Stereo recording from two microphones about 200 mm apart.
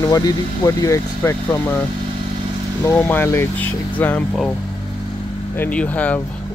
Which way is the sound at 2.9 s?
10° left (ahead or behind).